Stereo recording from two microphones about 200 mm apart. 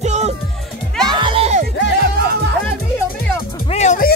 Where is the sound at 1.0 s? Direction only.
25° right (ahead or behind).